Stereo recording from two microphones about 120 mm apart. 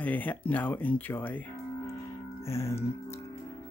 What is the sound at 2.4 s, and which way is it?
Music, 25° left (ahead or behind).